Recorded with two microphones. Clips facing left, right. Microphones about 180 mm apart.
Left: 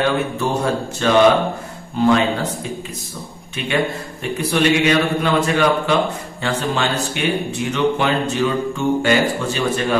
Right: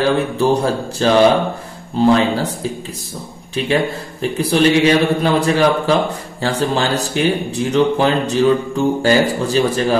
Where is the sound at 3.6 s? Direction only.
35° right (ahead or behind).